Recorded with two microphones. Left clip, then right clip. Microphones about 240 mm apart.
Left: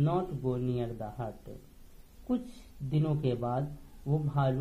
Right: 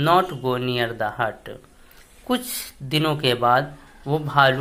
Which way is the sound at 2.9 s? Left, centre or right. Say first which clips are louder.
Right 12 dB; right.